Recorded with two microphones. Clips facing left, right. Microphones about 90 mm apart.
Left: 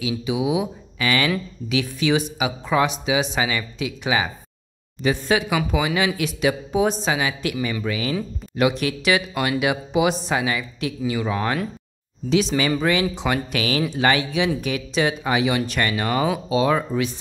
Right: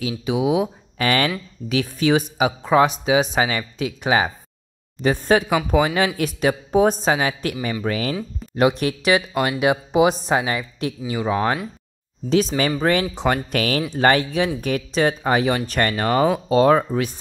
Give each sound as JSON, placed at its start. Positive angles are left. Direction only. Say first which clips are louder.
{"t": 0.0, "sound": "speech", "louder": "right 2 dB", "side_deg": -45}
{"t": 12.3, "sound": "speech", "louder": "right 1 dB", "side_deg": -40}